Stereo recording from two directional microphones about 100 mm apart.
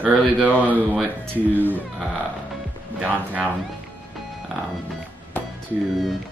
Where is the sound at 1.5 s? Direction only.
20° left (ahead or behind).